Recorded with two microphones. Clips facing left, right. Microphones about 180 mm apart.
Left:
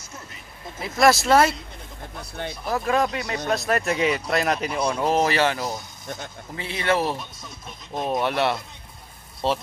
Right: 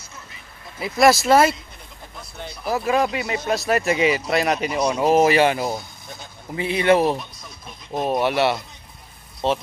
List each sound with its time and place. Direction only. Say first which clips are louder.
0.7 s speech: right 2 dB; 5° right (ahead or behind)
2.6 s speech: right 2 dB; 5° right (ahead or behind)
7.9 s speech: right 3 dB; 5° right (ahead or behind)